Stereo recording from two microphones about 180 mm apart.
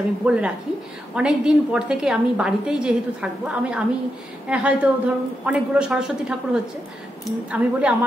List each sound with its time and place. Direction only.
0.2 s a woman's voice: 5° right (ahead or behind)